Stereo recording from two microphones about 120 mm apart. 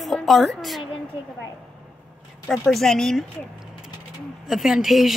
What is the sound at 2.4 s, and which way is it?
Music, centre (ahead or behind).